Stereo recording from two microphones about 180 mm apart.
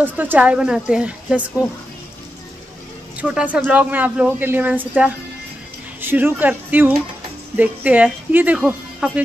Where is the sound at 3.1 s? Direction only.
5° right (ahead or behind).